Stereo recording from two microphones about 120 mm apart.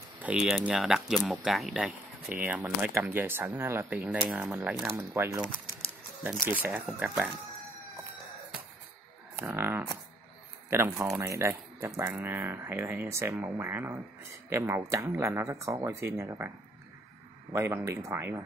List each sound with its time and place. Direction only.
0.2 s speech: 5° right (ahead or behind)
9.4 s speech: 15° right (ahead or behind)